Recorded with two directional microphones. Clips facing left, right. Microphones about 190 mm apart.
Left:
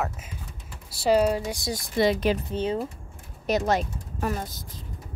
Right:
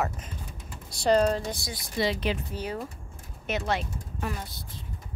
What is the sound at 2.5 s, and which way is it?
Speech, 25° left (ahead or behind).